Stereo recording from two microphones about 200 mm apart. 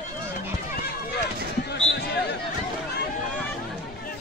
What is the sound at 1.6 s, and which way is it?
Basketball bounce, 55° left (ahead or behind).